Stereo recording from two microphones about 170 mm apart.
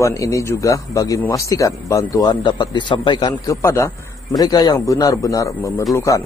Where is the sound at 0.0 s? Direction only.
20° left (ahead or behind).